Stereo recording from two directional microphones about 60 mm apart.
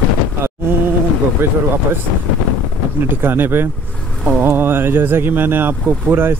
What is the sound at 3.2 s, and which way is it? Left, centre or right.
Speech, right.